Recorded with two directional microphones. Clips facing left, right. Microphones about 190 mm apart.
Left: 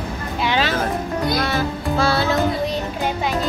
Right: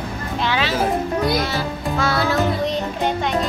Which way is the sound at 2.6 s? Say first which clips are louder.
Right 1 dB; 5° left (ahead or behind).